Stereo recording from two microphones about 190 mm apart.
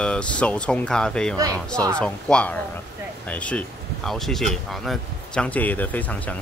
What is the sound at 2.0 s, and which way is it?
Speech, 5° left (ahead or behind).